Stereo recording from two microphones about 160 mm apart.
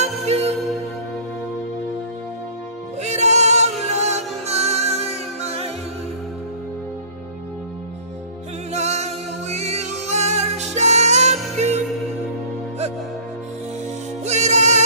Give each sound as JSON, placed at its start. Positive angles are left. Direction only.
{"t": 0.0, "sound": "music", "side_deg": -40}
{"t": 3.0, "sound": "music", "side_deg": -45}
{"t": 8.7, "sound": "music", "side_deg": -45}
{"t": 14.2, "sound": "music", "side_deg": -45}